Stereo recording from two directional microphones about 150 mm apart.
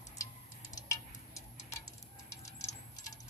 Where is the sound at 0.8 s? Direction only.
20° left (ahead or behind).